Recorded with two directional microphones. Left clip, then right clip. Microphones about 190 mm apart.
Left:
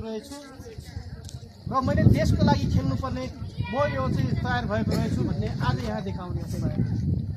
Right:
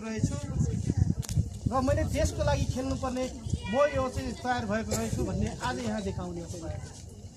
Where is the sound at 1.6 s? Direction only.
20° right (ahead or behind).